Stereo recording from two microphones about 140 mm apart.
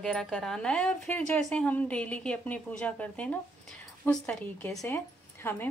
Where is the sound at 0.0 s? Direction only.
5° left (ahead or behind).